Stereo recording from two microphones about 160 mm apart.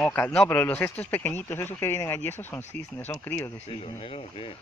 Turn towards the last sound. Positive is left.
turn(degrees=35)  # may be behind; listen again after turning